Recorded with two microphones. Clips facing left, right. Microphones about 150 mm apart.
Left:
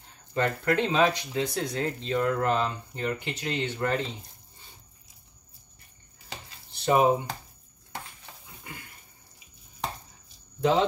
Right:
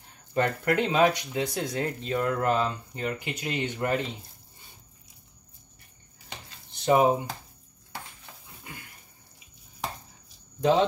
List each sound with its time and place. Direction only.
0.3 s speech: 15° right (ahead or behind)
6.8 s speech: 15° right (ahead or behind)